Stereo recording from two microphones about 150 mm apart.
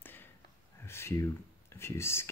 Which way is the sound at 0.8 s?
15° left (ahead or behind).